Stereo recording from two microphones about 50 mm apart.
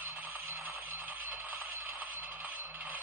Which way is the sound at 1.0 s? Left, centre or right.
Right.